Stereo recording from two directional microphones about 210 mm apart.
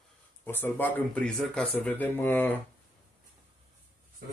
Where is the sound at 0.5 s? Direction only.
10° left (ahead or behind).